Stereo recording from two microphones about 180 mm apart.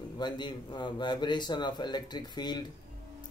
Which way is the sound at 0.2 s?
25° left (ahead or behind).